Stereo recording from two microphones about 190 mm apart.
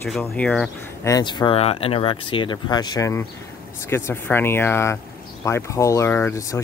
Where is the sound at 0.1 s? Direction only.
5° left (ahead or behind).